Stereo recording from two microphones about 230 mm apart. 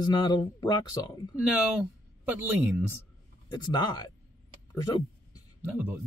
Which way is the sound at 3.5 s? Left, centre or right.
Centre.